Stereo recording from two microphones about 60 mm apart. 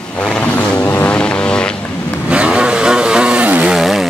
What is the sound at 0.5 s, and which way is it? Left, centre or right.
Vehicle, left.